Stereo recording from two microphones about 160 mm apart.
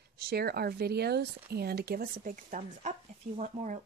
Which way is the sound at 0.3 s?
80° right.